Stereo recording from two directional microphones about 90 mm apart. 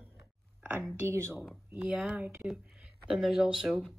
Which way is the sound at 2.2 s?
25° right (ahead or behind).